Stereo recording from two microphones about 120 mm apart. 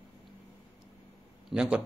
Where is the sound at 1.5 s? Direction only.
5° right (ahead or behind).